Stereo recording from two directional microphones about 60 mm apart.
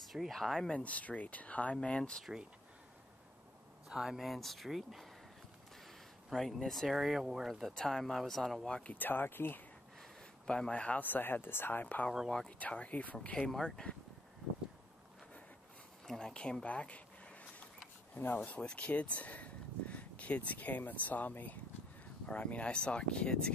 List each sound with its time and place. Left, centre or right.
0.1 s speech: centre
0.7 s speech: left
3.9 s speech: centre
6.3 s speech: centre
8.6 s speech: centre
8.9 s speech: left
10.4 s speech: centre
10.7 s speech: left
12.3 s speech: centre
12.5 s speech: left
13.4 s speech: centre
16.1 s a sound: centre
18.1 s speech: left